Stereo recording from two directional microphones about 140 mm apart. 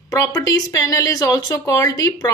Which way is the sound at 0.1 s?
25° left (ahead or behind).